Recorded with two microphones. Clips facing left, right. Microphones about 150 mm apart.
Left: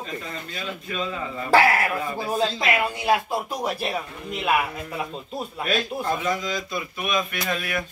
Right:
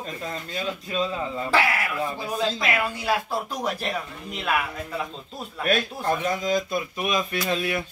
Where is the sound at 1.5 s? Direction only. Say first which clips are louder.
Left 6 dB; 40° left (ahead or behind).